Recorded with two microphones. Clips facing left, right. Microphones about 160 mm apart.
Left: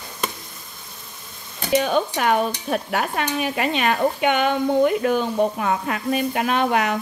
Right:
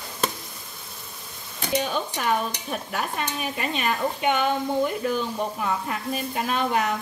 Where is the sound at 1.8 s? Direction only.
70° left (ahead or behind).